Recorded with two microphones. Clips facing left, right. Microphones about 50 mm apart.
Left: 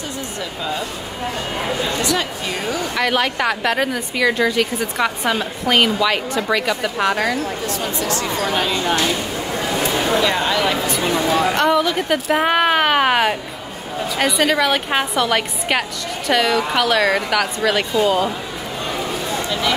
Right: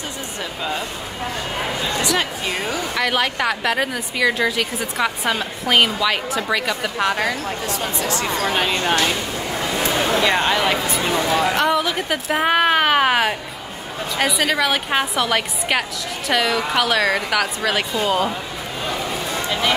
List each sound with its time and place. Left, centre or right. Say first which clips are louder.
3.0 s a woman's voice: left 1 dB; centre
7.6 s speech: left 1 dB; right
8.6 s speech: even; right
10.2 s speech: right 1 dB; right
10.9 s a woman's voice: left 1 dB; centre